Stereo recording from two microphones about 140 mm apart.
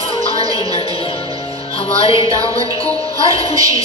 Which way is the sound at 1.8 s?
40° left (ahead or behind).